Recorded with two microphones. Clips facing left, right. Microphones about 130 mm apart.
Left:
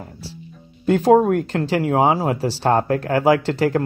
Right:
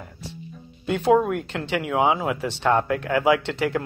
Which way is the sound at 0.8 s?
40° left (ahead or behind).